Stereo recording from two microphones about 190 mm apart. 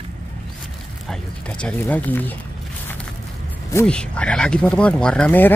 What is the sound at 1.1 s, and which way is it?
Speech, 5° left (ahead or behind).